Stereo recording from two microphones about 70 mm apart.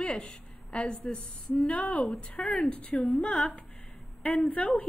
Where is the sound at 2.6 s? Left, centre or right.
Centre.